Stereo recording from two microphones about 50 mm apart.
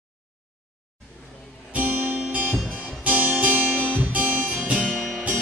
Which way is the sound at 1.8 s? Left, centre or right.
Right.